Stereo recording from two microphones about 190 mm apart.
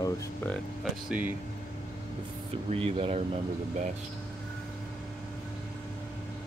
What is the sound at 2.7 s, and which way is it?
Speech, 30° right (ahead or behind).